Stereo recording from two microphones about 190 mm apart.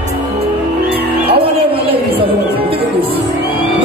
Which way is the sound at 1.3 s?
30° right (ahead or behind).